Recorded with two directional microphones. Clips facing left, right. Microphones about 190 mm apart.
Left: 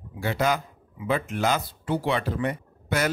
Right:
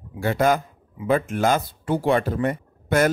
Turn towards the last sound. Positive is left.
turn(degrees=-50)  # may be behind; listen again after turning